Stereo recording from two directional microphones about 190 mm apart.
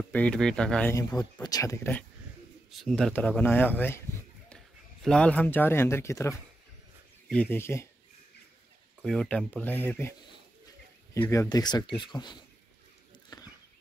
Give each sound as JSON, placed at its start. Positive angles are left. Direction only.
{"t": 0.1, "sound": "speech", "side_deg": 5}
{"t": 0.9, "sound": "speech", "side_deg": 20}
{"t": 2.7, "sound": "speech", "side_deg": 0}
{"t": 5.0, "sound": "speech", "side_deg": 5}
{"t": 9.0, "sound": "speech", "side_deg": 5}
{"t": 11.1, "sound": "speech", "side_deg": 15}
{"t": 13.3, "sound": "a sound", "side_deg": 20}